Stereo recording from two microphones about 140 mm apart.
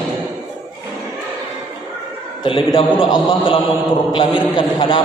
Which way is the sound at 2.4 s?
35° left (ahead or behind).